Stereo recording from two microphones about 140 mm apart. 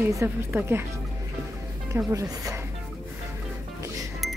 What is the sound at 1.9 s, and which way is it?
Speech, 20° right (ahead or behind).